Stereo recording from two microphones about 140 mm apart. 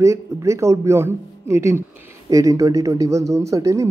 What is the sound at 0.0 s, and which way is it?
Speech, 20° right (ahead or behind).